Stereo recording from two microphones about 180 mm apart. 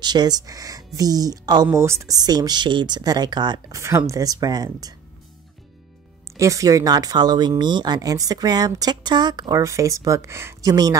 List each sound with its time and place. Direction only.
0.0 s speech: 25° right (ahead or behind)
6.3 s speech: 15° right (ahead or behind)